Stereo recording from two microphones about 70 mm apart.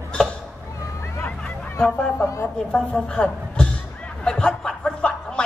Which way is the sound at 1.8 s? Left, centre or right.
Centre.